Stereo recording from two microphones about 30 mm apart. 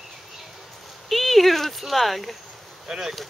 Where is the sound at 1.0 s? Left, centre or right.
Centre.